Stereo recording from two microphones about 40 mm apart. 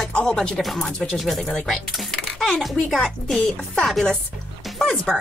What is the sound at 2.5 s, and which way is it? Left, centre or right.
Speech, centre.